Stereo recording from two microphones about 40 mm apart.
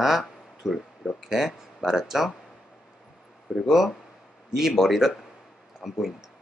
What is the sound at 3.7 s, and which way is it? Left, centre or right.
Speech, centre.